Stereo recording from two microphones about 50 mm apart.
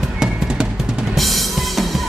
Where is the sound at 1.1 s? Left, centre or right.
Centre.